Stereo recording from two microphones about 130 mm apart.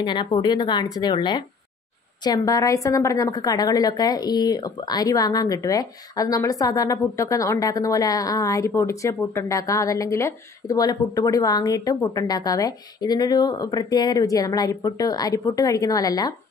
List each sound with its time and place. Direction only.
0.0 s a woman's voice: 35° left (ahead or behind)